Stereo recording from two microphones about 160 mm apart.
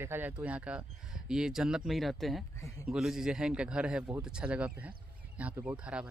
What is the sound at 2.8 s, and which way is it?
A man's voice, 5° right (ahead or behind).